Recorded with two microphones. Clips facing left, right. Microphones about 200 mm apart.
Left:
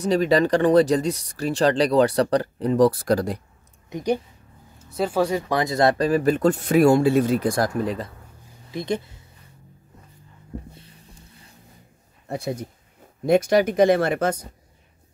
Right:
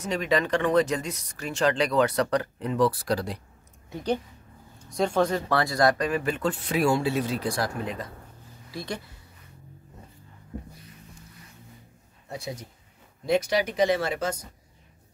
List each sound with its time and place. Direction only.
0.0 s speech: 35° left (ahead or behind)
3.9 s a woman's voice: 10° left (ahead or behind); by 8.1 s 35° left (ahead or behind)
8.7 s speech: 20° left (ahead or behind)
10.7 s boat: 30° left (ahead or behind)
12.3 s speech: 55° left (ahead or behind)